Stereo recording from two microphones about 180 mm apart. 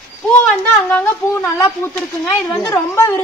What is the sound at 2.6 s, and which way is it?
Speech, 15° left (ahead or behind).